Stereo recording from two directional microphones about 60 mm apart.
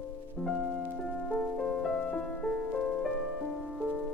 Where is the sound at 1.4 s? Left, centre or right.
Centre.